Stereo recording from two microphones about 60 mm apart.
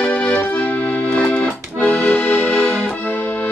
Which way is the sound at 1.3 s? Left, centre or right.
Left.